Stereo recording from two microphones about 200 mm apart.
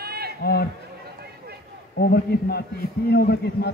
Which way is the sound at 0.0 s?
50° right (ahead or behind).